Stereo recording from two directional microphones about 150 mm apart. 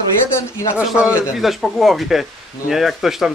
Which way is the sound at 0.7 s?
10° right (ahead or behind).